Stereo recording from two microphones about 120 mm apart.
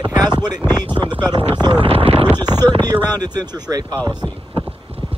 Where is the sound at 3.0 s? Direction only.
35° right (ahead or behind).